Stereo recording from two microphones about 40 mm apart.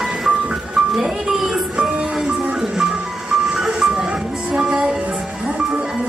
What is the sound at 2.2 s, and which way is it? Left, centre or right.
Music, right.